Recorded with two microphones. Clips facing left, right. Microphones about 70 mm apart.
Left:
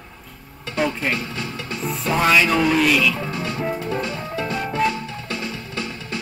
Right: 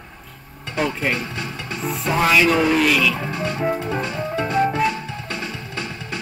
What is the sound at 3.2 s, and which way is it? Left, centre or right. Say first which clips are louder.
Music: right 2 dB; centre.